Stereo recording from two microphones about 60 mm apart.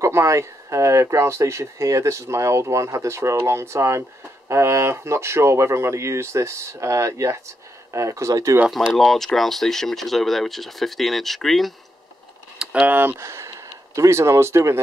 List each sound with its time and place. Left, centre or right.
0.0 s speech: right
8.6 s speech: centre
12.8 s speech: right
13.1 s speech: right